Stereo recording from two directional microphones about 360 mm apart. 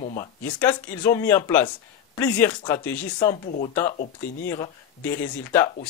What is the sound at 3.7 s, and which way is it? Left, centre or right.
Speech, centre.